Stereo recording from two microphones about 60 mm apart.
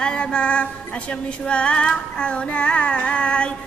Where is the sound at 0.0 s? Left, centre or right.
Centre.